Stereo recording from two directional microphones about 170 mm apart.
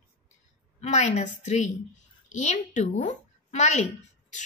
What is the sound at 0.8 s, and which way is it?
A woman's voice, 45° left (ahead or behind).